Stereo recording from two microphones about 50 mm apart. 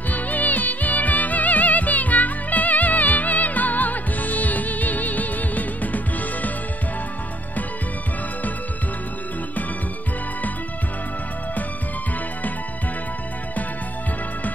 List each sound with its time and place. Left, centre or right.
0.1 s music: left